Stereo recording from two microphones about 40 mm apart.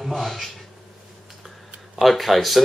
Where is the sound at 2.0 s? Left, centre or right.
Centre.